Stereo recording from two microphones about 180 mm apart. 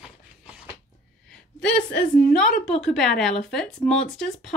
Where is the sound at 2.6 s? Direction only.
Centre (ahead or behind).